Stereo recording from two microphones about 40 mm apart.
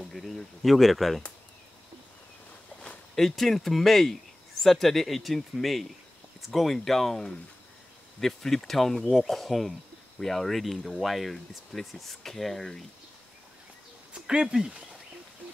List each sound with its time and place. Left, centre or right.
0.0 s speech: centre
3.2 s speech: centre
14.1 s speech: centre